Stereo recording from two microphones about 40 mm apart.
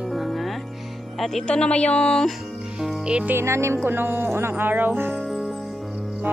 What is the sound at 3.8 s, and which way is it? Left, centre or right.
Speech, right.